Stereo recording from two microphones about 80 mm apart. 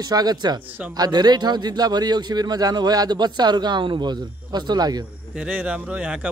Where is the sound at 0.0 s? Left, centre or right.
Right.